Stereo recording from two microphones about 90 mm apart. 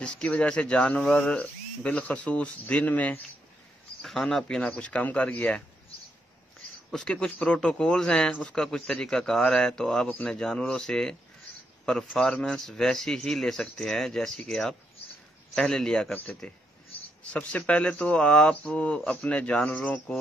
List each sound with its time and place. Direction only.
0.0 s speech: 10° left (ahead or behind)
4.0 s speech: centre (ahead or behind)
6.9 s speech: 10° left (ahead or behind)